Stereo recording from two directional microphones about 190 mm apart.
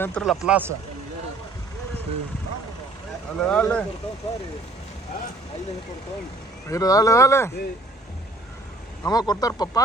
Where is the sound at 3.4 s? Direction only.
5° left (ahead or behind).